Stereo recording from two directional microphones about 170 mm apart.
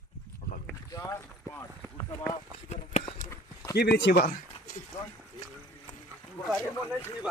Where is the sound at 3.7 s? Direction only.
80° left; by 4.8 s 60° left (ahead or behind).